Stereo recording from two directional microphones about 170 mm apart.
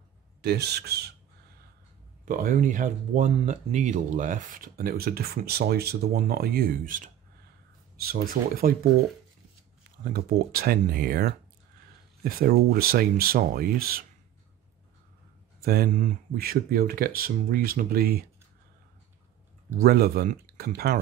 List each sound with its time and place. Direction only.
0.4 s speech: 75° right (ahead or behind)
2.2 s speech: 55° right (ahead or behind)
10.1 s speech: 60° right (ahead or behind)
15.6 s speech: 65° right (ahead or behind)
19.8 s speech: 65° right (ahead or behind)